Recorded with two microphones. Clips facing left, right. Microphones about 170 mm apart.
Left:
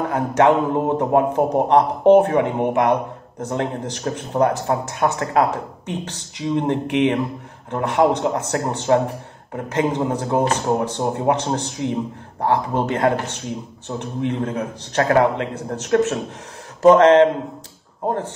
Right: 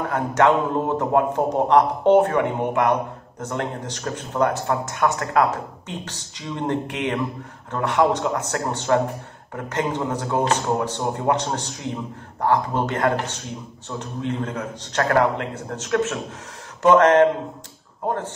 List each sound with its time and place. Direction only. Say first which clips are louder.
0.1 s speech: left 2 dB; 20° left (ahead or behind)
15.5 s speech: left 4 dB; 35° left (ahead or behind)
16.8 s speech: left 3 dB; 20° left (ahead or behind)